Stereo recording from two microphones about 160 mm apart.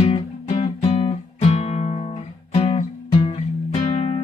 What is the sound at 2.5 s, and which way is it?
Music, 40° left (ahead or behind).